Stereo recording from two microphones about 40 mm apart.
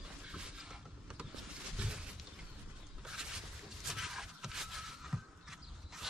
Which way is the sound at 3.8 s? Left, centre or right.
Centre.